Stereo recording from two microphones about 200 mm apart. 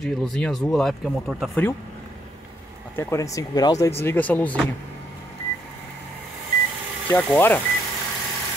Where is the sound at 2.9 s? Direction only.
15° left (ahead or behind).